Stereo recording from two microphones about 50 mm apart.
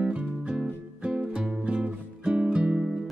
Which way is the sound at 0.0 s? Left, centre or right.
Right.